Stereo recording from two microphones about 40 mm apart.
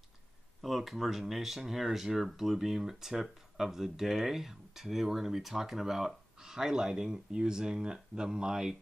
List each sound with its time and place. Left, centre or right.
0.6 s speech: centre